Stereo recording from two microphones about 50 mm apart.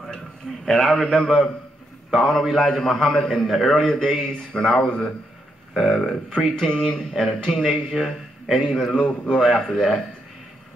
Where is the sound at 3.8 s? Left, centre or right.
Centre.